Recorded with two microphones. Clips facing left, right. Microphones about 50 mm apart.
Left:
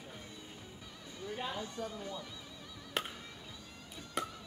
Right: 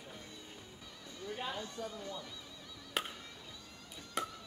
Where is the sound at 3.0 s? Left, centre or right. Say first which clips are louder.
Even; centre.